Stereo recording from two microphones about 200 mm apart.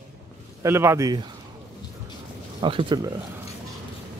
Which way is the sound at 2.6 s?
25° right (ahead or behind).